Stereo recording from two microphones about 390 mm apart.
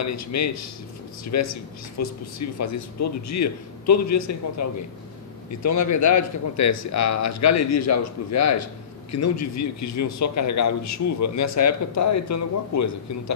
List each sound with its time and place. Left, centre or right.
0.0 s a man's voice: left